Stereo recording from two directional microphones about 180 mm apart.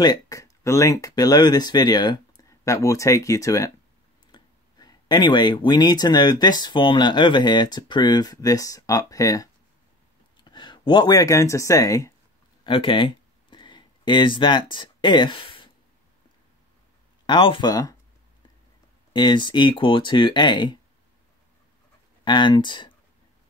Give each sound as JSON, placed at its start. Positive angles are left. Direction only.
{"t": 0.0, "sound": "speech", "side_deg": 20}
{"t": 12.6, "sound": "a sound", "side_deg": 30}
{"t": 17.3, "sound": "speech", "side_deg": 25}
{"t": 19.1, "sound": "speech", "side_deg": 25}
{"t": 22.2, "sound": "speech", "side_deg": 25}